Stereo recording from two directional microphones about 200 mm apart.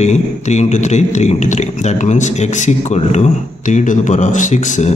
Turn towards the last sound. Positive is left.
turn(degrees=35)  # may be behind; listen again after turning